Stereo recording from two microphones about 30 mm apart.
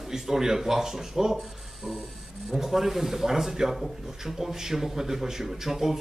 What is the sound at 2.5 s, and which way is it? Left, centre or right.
Speech, centre.